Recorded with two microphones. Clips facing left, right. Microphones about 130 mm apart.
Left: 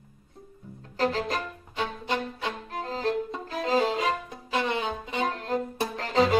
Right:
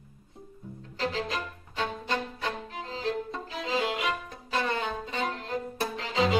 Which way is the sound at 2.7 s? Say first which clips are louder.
Left 8 dB; 45° left (ahead or behind).